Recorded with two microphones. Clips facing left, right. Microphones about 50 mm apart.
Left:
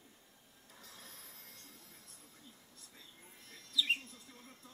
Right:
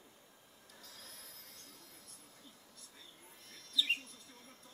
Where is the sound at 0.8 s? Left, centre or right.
Left.